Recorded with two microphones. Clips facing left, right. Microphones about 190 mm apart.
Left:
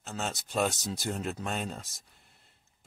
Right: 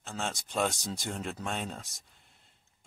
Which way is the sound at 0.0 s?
Centre (ahead or behind).